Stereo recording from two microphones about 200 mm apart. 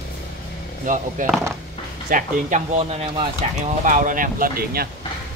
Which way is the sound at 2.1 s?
40° right (ahead or behind).